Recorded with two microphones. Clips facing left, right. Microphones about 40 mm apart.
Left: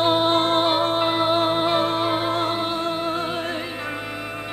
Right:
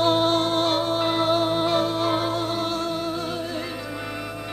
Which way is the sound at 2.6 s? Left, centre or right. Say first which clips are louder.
Left 2 dB; left.